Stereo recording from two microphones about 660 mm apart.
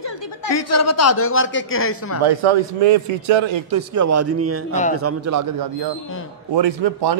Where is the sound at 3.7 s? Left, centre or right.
Right.